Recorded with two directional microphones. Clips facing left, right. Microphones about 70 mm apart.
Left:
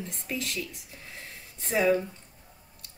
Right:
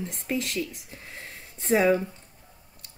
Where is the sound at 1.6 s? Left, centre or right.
Right.